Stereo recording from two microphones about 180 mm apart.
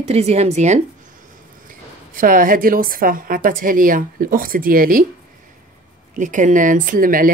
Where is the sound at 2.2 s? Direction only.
50° right (ahead or behind).